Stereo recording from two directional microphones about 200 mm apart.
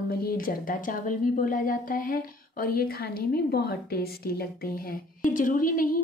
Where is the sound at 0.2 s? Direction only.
45° left (ahead or behind).